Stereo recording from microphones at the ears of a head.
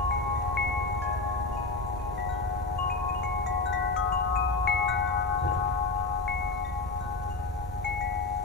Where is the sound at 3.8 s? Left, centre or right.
Left.